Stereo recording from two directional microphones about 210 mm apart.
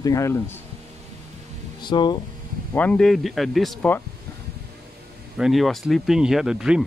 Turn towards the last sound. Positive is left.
turn(degrees=-5)  # may be behind; listen again after turning